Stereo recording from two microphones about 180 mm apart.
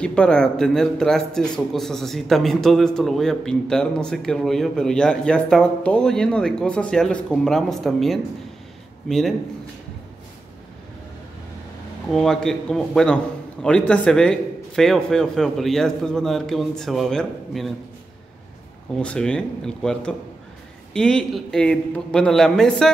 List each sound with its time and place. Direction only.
0.0 s a man's voice: 5° left (ahead or behind)
12.1 s a man's voice: 5° left (ahead or behind)
18.9 s a man's voice: 5° left (ahead or behind)